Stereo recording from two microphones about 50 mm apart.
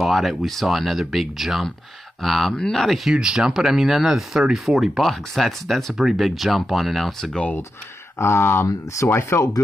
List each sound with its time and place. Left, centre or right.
0.0 s speech: centre
3.2 s speech: centre
8.2 s speech: left
9.1 s speech: left